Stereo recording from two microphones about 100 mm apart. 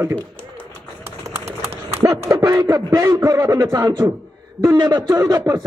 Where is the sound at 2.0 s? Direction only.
35° right (ahead or behind).